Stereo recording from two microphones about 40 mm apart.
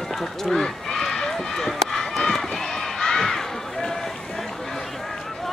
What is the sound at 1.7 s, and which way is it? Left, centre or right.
Crowd, centre.